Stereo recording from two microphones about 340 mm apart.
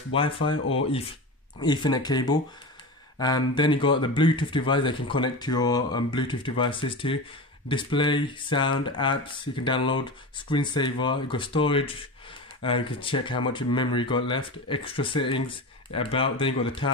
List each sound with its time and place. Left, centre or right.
0.1 s speech: centre
1.6 s speech: centre